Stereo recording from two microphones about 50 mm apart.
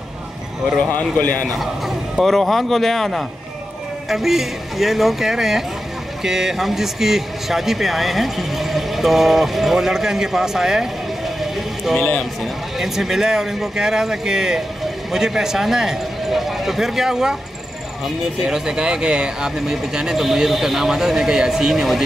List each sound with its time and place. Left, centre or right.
0.9 s speech: left
2.2 s a man's voice: centre